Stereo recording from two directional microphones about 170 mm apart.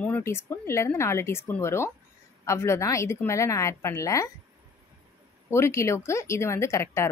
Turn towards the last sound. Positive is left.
turn(degrees=15)  # may be behind; listen again after turning